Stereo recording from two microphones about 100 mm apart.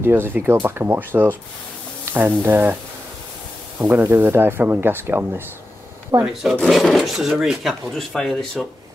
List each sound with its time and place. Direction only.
0.0 s speech: 20° right (ahead or behind)
3.8 s speech: 25° right (ahead or behind)
6.1 s speech: 30° right (ahead or behind)
6.6 s speech: 5° left (ahead or behind)